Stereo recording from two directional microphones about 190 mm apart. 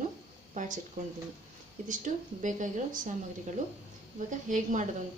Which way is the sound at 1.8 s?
45° right (ahead or behind).